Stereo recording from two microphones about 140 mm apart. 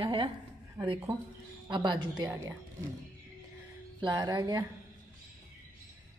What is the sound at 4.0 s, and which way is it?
Speech, 25° right (ahead or behind).